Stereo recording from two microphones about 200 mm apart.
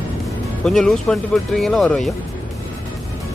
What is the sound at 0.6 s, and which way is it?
Speech, 5° left (ahead or behind).